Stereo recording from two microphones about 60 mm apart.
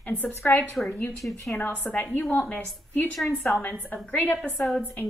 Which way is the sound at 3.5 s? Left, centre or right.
Left.